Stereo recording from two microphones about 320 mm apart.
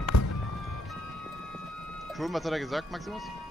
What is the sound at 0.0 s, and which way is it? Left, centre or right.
Music, left.